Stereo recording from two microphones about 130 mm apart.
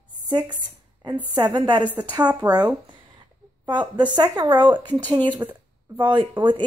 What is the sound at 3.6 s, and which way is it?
A woman's voice, 35° right (ahead or behind).